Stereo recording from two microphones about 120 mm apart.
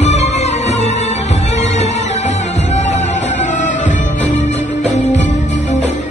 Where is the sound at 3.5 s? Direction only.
90° left.